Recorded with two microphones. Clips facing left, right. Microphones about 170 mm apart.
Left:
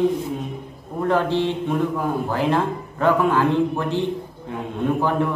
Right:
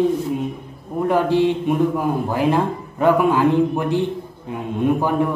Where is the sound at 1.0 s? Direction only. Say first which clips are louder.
Right 3 dB; 15° right (ahead or behind).